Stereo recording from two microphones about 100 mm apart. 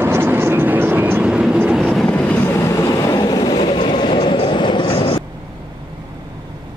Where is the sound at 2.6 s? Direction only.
30° left (ahead or behind); by 5.2 s 70° left (ahead or behind).